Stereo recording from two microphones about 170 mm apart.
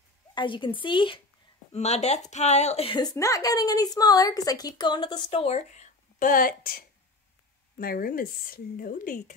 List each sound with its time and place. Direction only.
0.3 s speech: 30° left (ahead or behind)
1.7 s a woman's voice: 40° left (ahead or behind)